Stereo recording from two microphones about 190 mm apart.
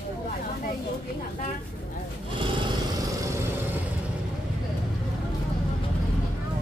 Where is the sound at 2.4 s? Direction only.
25° right (ahead or behind).